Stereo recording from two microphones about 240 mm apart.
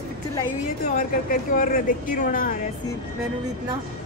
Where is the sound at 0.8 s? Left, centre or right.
Left.